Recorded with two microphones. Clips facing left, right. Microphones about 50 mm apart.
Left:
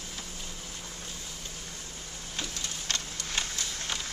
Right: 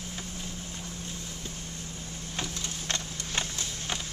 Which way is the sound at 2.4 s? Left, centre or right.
Right.